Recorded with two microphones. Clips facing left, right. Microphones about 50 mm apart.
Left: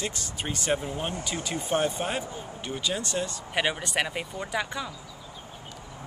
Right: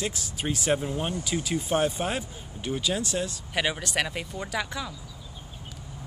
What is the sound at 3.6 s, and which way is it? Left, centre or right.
Speech, centre.